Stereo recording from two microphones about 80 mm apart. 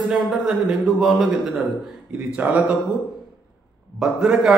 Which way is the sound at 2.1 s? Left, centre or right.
Centre.